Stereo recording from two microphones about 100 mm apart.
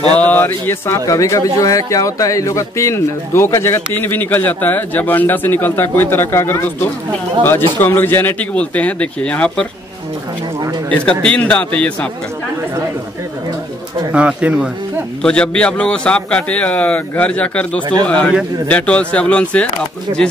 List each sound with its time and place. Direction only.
0.2 s a man's voice: 15° left (ahead or behind)
10.9 s a man's voice: 10° left (ahead or behind)
14.1 s speech: 10° right (ahead or behind)
15.2 s a man's voice: 10° left (ahead or behind)
20.1 s speech: 50° right (ahead or behind)